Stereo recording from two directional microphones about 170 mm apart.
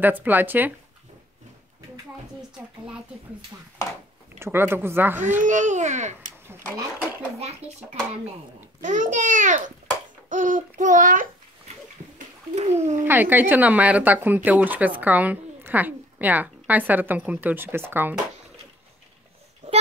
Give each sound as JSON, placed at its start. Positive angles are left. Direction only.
{"t": 0.0, "sound": "speech", "side_deg": -10}
{"t": 4.4, "sound": "speech", "side_deg": -15}
{"t": 5.4, "sound": "a child's voice", "side_deg": -45}
{"t": 7.3, "sound": "a child's voice", "side_deg": -40}
{"t": 12.5, "sound": "a child's voice", "side_deg": -40}
{"t": 13.0, "sound": "speech", "side_deg": -10}